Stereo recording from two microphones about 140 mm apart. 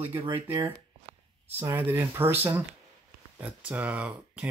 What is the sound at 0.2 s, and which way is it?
Speech, 25° right (ahead or behind).